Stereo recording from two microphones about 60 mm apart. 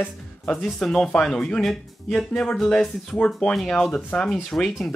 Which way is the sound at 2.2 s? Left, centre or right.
Centre.